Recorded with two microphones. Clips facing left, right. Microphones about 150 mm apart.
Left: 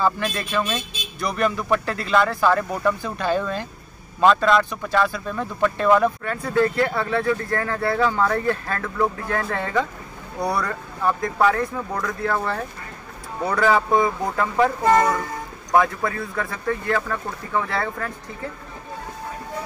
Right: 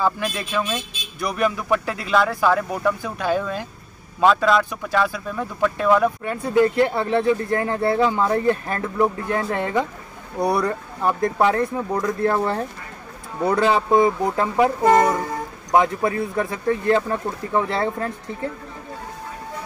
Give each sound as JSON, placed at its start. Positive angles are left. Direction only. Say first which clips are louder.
{"t": 0.0, "sound": "speech", "louder": "even", "side_deg": -5}
{"t": 6.2, "sound": "speech", "louder": "right 3 dB", "side_deg": -20}